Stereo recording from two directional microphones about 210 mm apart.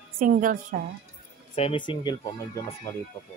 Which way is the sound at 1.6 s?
25° left (ahead or behind).